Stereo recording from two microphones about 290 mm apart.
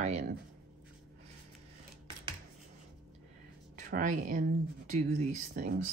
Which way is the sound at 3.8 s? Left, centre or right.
Right.